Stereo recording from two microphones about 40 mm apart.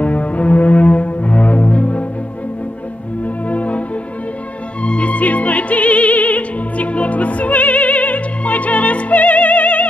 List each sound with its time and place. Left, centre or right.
0.0 s music: left
3.4 s music: left